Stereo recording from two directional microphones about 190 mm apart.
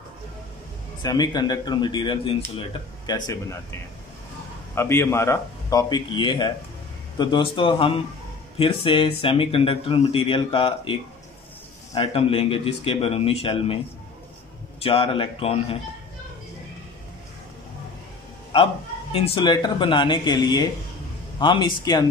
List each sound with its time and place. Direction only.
1.0 s speech: 20° left (ahead or behind)
4.7 s a man's voice: 15° left (ahead or behind); by 13.7 s 30° left (ahead or behind)
14.8 s speech: 30° left (ahead or behind)
19.1 s speech: 30° left (ahead or behind)